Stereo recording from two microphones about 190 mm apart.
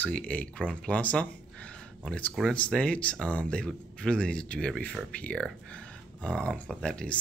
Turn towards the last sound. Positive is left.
turn(degrees=5)  # may be behind; listen again after turning